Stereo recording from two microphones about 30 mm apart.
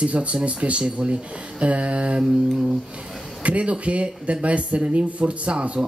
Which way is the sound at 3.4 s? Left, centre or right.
Right.